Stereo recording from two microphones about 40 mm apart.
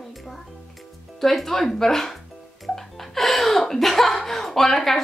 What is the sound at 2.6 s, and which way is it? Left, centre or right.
Chuckle, centre.